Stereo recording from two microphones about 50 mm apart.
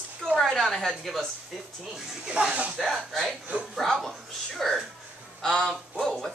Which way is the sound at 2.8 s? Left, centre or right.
Centre.